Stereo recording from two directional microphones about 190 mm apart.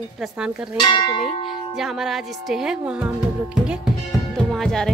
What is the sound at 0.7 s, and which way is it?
Church bell, 25° left (ahead or behind).